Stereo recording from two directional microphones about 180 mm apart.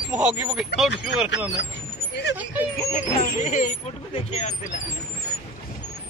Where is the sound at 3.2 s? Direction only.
45° left (ahead or behind).